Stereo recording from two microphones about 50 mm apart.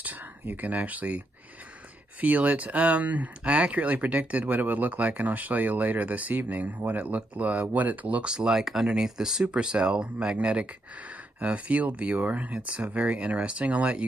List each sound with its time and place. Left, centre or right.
0.0 s speech: right
8.3 s speech: centre